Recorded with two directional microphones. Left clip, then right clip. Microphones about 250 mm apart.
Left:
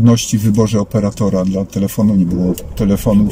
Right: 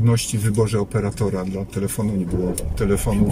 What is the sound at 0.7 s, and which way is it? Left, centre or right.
Speech, centre.